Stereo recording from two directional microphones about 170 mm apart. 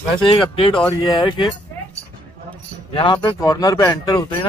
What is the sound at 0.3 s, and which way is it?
A man's voice, 30° left (ahead or behind).